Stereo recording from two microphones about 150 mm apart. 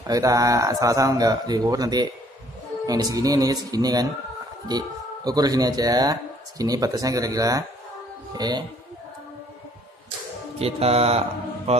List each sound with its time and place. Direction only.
0.0 s speech: 25° right (ahead or behind)
10.6 s mantra: 40° right (ahead or behind)